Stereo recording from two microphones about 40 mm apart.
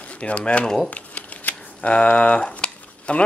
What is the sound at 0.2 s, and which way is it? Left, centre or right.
Speech, left.